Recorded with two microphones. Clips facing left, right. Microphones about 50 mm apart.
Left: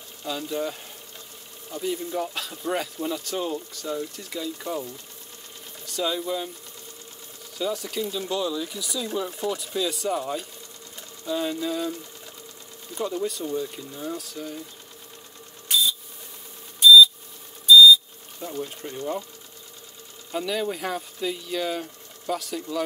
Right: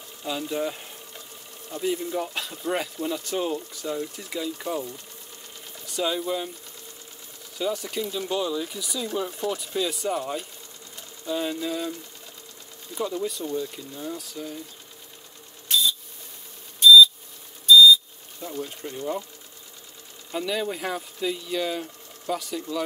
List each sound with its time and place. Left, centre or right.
0.2 s speech: centre
5.9 s speech: centre
7.5 s speech: centre
12.9 s speech: centre
16.8 s beep: centre
18.4 s speech: centre
20.2 s speech: centre